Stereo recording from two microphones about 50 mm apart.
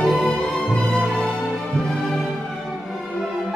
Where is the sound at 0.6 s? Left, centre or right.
Centre.